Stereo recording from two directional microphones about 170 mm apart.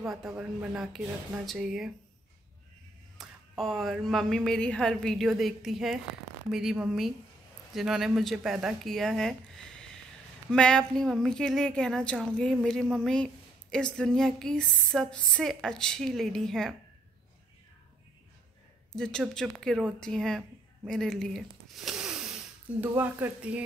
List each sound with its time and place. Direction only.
0.0 s speech: centre (ahead or behind)
3.2 s speech: centre (ahead or behind)
10.5 s speech: 5° left (ahead or behind)
18.9 s speech: 5° left (ahead or behind)